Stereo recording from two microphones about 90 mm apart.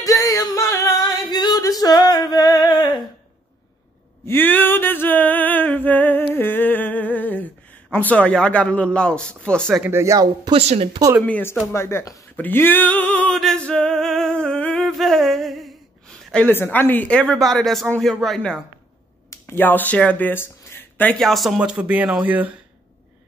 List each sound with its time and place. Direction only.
0.0 s singing: 40° left (ahead or behind)
1.3 s singing: 45° left (ahead or behind)
4.3 s a sound: 20° left (ahead or behind)
9.4 s speech: 10° left (ahead or behind)
9.8 s speech: 35° right (ahead or behind)
10.5 s a woman's voice: 90° right
11.6 s speech: 30° left (ahead or behind)
12.4 s female singing: 20° left (ahead or behind)
13.3 s singing: 5° left (ahead or behind)
16.4 s speech: 25° left (ahead or behind); by 18.6 s 5° left (ahead or behind)
19.3 s speech: 25° left (ahead or behind)
21.1 s speech: 5° left (ahead or behind)
21.5 s speech: 10° right (ahead or behind)